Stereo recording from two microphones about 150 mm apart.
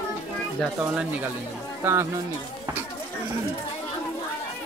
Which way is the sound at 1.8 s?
15° right (ahead or behind).